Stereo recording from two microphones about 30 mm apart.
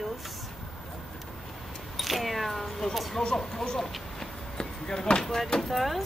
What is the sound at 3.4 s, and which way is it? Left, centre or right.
Speech, centre.